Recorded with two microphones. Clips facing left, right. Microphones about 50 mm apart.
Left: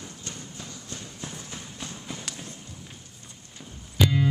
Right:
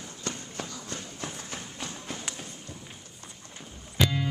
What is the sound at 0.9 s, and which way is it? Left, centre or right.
Walk, right.